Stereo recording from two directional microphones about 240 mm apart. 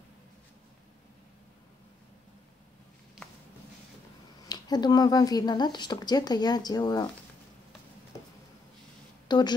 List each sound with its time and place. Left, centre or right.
4.5 s speech: centre
9.3 s speech: centre